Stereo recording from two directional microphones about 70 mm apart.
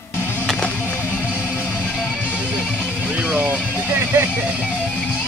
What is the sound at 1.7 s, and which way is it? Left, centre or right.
Music, centre.